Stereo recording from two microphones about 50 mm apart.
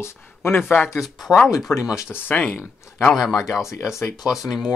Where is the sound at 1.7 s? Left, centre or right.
Left.